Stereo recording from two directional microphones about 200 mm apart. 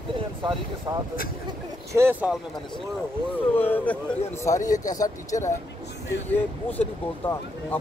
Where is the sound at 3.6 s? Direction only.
10° left (ahead or behind).